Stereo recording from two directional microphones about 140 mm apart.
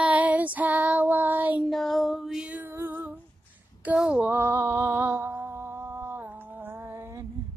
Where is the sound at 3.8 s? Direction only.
10° right (ahead or behind).